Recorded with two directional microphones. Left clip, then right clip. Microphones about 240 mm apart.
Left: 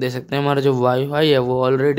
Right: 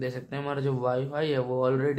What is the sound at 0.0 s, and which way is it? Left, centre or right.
Speech, left.